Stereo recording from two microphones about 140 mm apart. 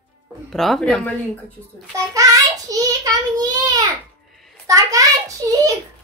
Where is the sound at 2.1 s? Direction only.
25° right (ahead or behind).